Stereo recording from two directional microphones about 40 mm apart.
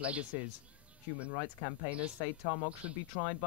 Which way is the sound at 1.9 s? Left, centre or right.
Right.